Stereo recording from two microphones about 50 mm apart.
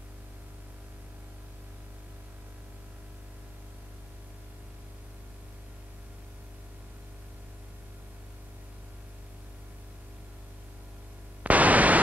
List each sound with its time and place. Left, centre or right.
11.4 s static: right